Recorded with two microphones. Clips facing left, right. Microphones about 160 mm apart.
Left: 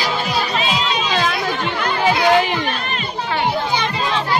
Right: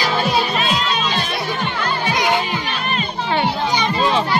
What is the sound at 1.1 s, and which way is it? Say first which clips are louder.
Chatter: left 4 dB; 90° left.